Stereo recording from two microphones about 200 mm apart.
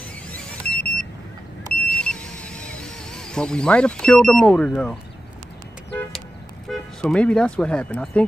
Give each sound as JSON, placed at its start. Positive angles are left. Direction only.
{"t": 0.3, "sound": "vehicle", "side_deg": 5}
{"t": 1.9, "sound": "a sound", "side_deg": 5}
{"t": 6.7, "sound": "speech", "side_deg": 5}